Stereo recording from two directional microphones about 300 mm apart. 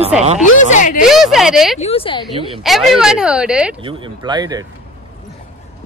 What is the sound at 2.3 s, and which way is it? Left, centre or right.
Speech, centre.